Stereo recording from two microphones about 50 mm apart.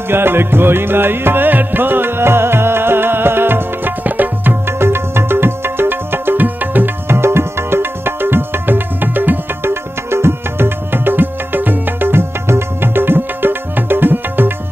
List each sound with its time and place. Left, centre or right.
0.1 s music: right
4.6 s music: right
7.1 s music: right